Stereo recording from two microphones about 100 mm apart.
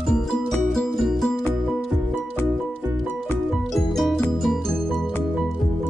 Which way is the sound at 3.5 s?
Centre (ahead or behind).